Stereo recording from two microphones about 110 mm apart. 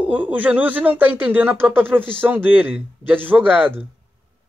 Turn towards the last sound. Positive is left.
turn(degrees=-15)  # may be behind; listen again after turning